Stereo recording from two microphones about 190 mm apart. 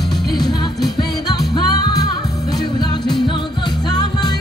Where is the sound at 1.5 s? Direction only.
20° left (ahead or behind).